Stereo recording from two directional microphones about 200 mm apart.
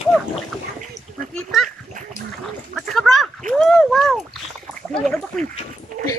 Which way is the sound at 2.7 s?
Centre (ahead or behind).